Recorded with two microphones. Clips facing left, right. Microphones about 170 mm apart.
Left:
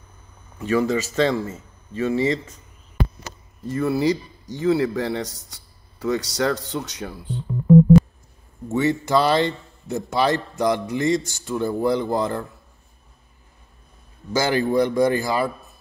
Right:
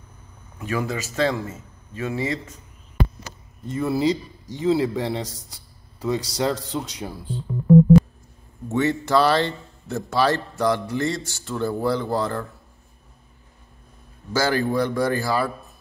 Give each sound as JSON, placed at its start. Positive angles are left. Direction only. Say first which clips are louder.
{"t": 0.7, "sound": "speech", "louder": "left 6 dB", "side_deg": -10}
{"t": 3.6, "sound": "speech", "louder": "left 1 dB", "side_deg": -20}
{"t": 8.7, "sound": "a man's voice", "louder": "even", "side_deg": 10}
{"t": 14.3, "sound": "a man's voice", "louder": "left 2 dB", "side_deg": 15}